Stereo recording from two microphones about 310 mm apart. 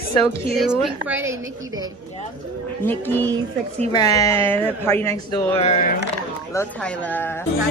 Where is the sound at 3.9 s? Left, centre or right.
Centre.